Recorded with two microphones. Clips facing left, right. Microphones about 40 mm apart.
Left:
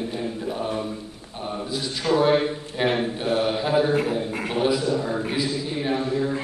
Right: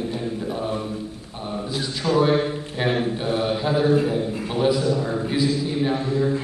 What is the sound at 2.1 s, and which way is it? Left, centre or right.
Speech, left.